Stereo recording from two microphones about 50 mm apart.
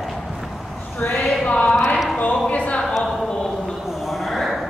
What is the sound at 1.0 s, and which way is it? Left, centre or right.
Speech, left.